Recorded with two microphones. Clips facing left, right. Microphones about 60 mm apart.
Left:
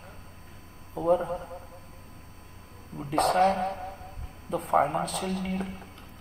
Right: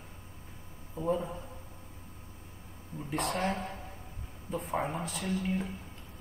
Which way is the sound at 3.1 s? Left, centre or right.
Left.